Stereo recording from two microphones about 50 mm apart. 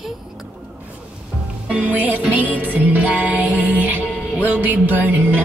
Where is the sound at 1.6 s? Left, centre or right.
Right.